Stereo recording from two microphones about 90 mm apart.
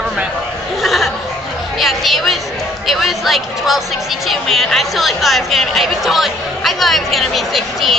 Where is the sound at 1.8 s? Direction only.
Centre (ahead or behind).